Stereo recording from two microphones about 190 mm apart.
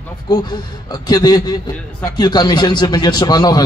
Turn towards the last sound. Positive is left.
turn(degrees=20)  # may be behind; listen again after turning